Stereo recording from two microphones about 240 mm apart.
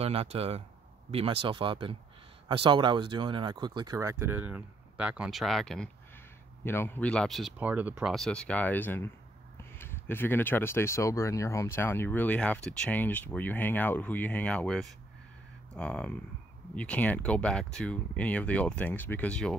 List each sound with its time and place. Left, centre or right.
0.0 s speech: right; by 19.5 s centre